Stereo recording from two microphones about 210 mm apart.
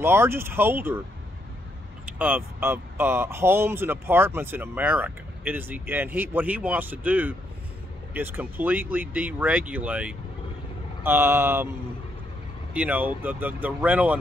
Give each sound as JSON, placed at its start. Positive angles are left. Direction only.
{"t": 0.0, "sound": "speech", "side_deg": -10}
{"t": 2.0, "sound": "speech", "side_deg": -10}
{"t": 12.7, "sound": "speech", "side_deg": -5}